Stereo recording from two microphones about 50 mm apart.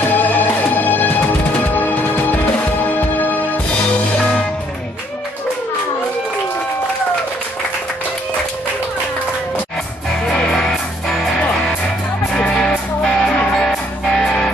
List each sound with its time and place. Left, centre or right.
0.1 s music: left
4.2 s music: left
10.3 s music: centre
12.4 s music: centre